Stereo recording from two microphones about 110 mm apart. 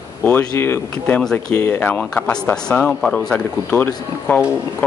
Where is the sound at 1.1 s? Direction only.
10° left (ahead or behind).